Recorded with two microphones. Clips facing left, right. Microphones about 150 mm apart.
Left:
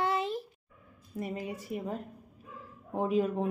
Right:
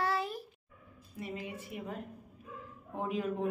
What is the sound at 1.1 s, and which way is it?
Speech, 45° left (ahead or behind).